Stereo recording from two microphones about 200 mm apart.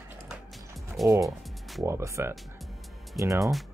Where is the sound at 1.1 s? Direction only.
15° right (ahead or behind).